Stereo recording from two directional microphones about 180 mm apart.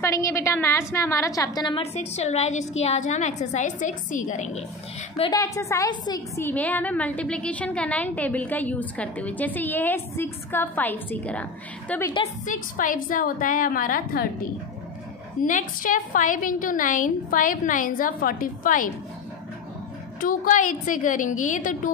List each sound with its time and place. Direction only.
0.0 s a woman's voice: 15° left (ahead or behind)
1.8 s a woman's voice: 35° left (ahead or behind)
5.3 s a woman's voice: 15° left (ahead or behind)
12.4 s a woman's voice: 50° left (ahead or behind)
15.4 s a woman's voice: 45° left (ahead or behind)
20.2 s a woman's voice: 50° left (ahead or behind)